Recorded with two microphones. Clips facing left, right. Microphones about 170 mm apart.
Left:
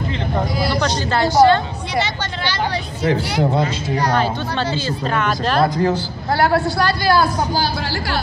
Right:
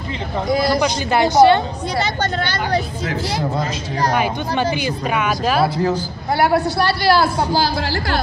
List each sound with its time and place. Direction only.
0.5 s speech: 45° right (ahead or behind)
0.7 s speech: 15° right (ahead or behind)
4.1 s speech: 15° right (ahead or behind)
6.8 s a woman's voice: 25° right (ahead or behind)